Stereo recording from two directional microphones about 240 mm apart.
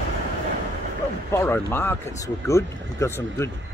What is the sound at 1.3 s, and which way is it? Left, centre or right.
Speech, centre.